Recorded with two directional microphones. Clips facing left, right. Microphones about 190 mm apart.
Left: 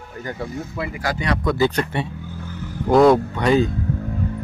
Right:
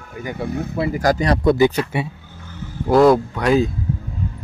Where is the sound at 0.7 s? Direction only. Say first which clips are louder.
Right 8 dB; 40° right (ahead or behind).